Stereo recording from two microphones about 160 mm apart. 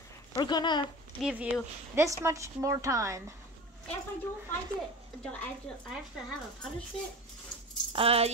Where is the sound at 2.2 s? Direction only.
20° right (ahead or behind).